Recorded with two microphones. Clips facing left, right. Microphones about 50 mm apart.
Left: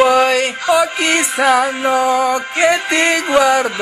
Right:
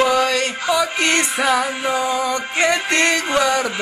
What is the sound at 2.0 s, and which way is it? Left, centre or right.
Music, left.